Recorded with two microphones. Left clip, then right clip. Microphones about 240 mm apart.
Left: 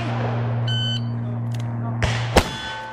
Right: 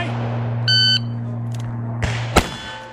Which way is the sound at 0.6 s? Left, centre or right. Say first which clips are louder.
Right 13 dB; centre.